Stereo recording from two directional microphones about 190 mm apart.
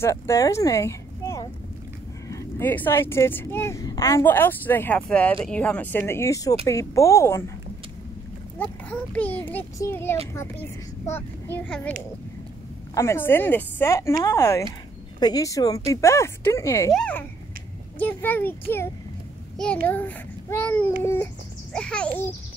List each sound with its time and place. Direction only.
0.0 s speech: 15° left (ahead or behind)
9.1 s speech: 10° left (ahead or behind)
12.9 s speech: 15° left (ahead or behind)
19.9 s a child's voice: 10° left (ahead or behind)